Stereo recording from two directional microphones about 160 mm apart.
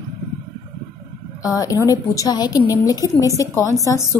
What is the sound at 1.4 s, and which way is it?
A woman's voice, 20° left (ahead or behind).